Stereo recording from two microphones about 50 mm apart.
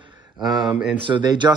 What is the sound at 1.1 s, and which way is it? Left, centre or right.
Speech, right.